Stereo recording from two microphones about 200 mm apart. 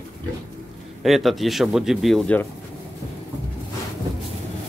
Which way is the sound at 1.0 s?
Centre (ahead or behind).